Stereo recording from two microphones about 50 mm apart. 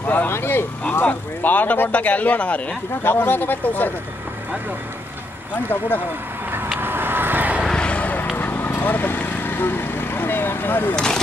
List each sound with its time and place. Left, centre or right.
0.0 s speech: left
0.3 s speech: left
1.0 s speech: left
3.0 s speech: left
6.8 s vehicle: right
7.7 s vehicle: left
8.4 s vehicle: left